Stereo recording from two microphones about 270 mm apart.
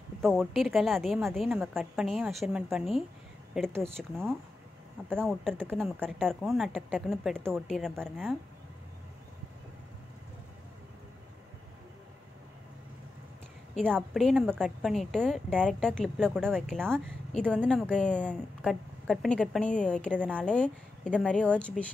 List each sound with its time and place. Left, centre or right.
0.2 s a woman's voice: centre
5.1 s a woman's voice: centre
13.7 s a woman's voice: centre